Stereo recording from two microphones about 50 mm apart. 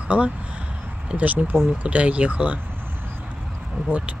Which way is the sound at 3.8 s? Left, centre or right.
Right.